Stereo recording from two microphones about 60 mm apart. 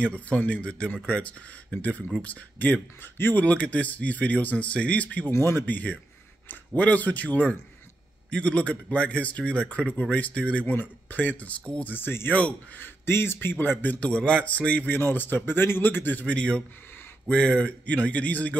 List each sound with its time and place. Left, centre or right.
0.0 s speech: left
3.4 s speech: left
5.4 s speech: left
5.7 s speech: left
12.3 s speech: centre
12.7 s speech: left
13.9 s speech: centre
16.3 s speech: centre